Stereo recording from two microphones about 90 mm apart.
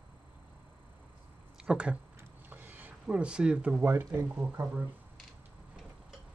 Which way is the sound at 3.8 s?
25° right (ahead or behind).